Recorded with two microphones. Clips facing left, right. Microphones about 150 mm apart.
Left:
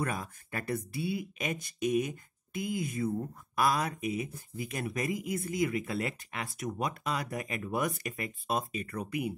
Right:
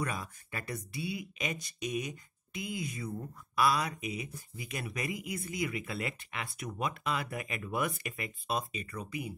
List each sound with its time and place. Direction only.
0.0 s speech: 50° left (ahead or behind)